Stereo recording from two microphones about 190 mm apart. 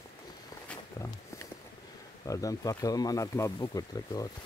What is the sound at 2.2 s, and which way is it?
Speech, 15° left (ahead or behind).